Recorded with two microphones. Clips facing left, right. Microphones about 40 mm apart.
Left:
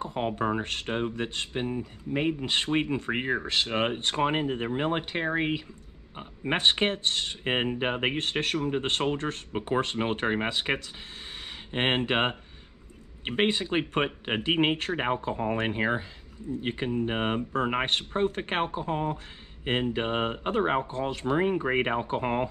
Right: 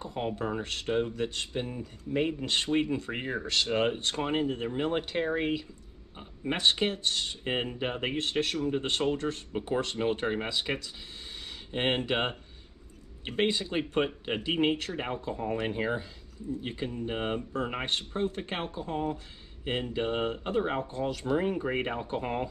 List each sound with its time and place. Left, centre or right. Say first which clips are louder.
0.0 s speech: left 4 dB; left